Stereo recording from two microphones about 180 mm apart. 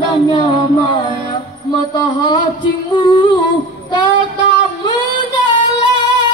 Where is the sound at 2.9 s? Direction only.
25° left (ahead or behind).